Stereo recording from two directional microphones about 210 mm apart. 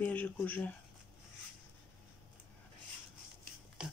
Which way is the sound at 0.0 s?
10° left (ahead or behind).